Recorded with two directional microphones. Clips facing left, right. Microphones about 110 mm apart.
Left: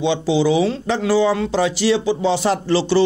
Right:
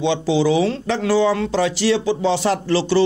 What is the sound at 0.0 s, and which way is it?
Speech, 15° left (ahead or behind).